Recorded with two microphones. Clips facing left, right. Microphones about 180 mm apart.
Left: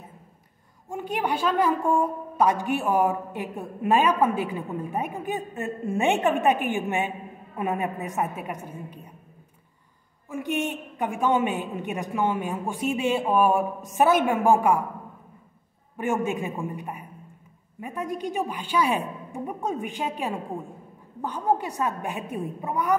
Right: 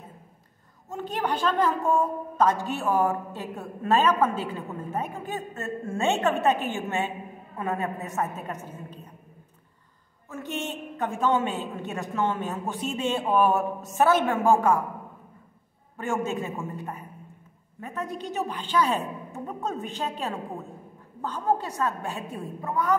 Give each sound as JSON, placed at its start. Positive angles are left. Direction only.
{"t": 0.8, "sound": "a woman's voice", "side_deg": 10}
{"t": 10.3, "sound": "a woman's voice", "side_deg": 15}
{"t": 16.0, "sound": "a woman's voice", "side_deg": 15}